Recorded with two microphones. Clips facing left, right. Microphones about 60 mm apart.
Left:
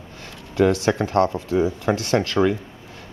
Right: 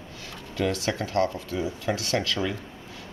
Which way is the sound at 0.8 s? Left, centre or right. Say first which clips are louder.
Left 6 dB; left.